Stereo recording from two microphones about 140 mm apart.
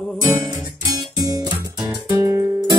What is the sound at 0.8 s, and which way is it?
Music, 25° right (ahead or behind).